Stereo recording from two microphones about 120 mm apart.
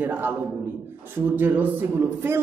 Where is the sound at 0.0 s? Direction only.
15° right (ahead or behind).